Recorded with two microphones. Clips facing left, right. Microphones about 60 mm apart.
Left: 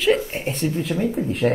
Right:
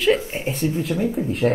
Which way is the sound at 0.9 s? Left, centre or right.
Centre.